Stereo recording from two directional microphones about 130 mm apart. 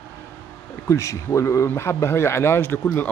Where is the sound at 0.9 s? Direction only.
25° left (ahead or behind).